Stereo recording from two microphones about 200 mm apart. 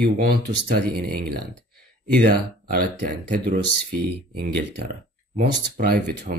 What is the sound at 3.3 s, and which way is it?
Speech, 50° right (ahead or behind).